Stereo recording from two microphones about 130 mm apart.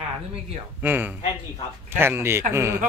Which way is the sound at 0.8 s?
15° right (ahead or behind).